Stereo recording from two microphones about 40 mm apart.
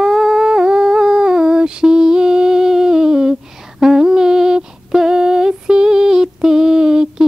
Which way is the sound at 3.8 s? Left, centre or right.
Centre.